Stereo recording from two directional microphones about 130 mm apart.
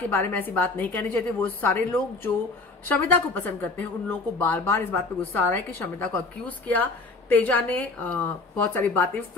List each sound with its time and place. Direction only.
0.1 s a woman's voice: 15° left (ahead or behind)